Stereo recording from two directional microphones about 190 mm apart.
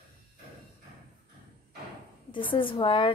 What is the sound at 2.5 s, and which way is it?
Speech, 25° left (ahead or behind).